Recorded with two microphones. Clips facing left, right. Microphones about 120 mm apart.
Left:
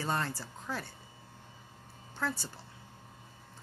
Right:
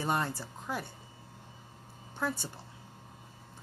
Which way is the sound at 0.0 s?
15° right (ahead or behind).